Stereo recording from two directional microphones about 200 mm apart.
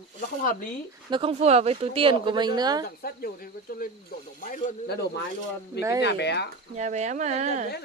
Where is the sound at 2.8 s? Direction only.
45° left (ahead or behind).